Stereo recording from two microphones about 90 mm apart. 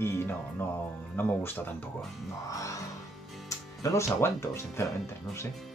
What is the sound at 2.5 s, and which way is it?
Music, 40° left (ahead or behind).